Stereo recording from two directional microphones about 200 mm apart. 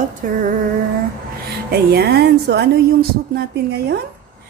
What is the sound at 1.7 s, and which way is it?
A woman's voice, 50° right (ahead or behind).